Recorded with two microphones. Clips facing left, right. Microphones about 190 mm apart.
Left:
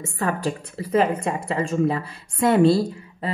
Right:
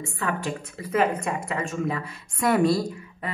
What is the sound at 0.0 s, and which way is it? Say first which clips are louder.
A woman's voice: left 4 dB; 40° left (ahead or behind).